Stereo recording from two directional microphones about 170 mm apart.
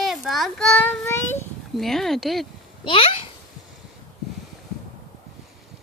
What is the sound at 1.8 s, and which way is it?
Speech, centre (ahead or behind).